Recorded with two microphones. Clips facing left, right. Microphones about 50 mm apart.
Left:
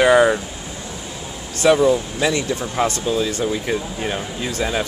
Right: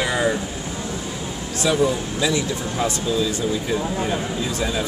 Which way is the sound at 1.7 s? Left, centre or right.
Left.